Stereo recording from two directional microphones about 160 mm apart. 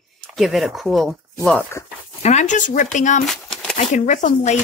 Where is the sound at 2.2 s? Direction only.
50° left (ahead or behind).